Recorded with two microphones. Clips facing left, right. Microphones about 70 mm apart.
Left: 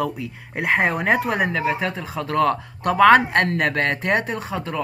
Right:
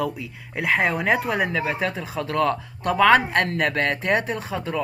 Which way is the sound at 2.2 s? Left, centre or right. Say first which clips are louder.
Left 3 dB; left.